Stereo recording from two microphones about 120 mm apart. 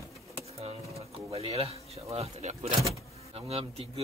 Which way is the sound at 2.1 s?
60° right (ahead or behind).